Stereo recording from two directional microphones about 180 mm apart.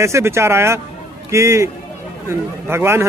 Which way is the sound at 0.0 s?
15° right (ahead or behind).